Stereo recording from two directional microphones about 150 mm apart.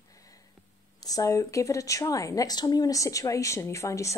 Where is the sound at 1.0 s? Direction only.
25° left (ahead or behind).